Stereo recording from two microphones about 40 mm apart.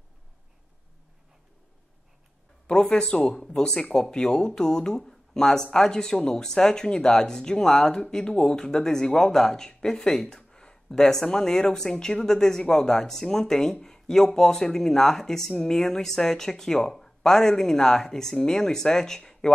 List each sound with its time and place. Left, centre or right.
2.6 s speech: left
10.3 s a sound: centre
11.3 s speech: centre